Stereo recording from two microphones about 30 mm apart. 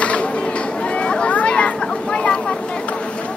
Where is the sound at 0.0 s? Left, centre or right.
Left.